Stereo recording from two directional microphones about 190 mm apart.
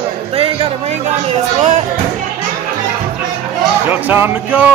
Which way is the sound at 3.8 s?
10° right (ahead or behind).